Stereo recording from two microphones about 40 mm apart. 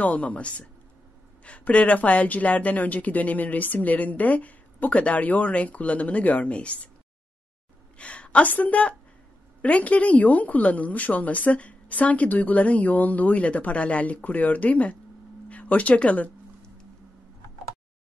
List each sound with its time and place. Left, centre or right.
0.0 s a woman's voice: left
8.0 s a woman's voice: left
8.5 s a woman's voice: left